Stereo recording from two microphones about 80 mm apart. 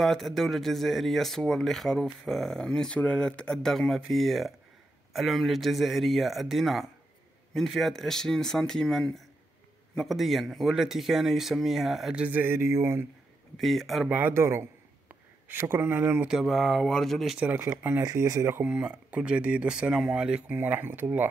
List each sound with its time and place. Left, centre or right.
0.0 s speech: centre
12.2 s a sound: right
13.6 s speech: centre
14.0 s speech: right
14.3 s a sound: right
15.4 s speech: right
16.3 s speech: centre
17.6 s speech: right
18.9 s speech: centre